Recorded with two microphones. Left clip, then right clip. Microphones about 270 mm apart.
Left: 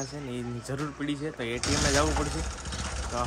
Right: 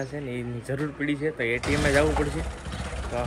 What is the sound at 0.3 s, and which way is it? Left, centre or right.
Speech, centre.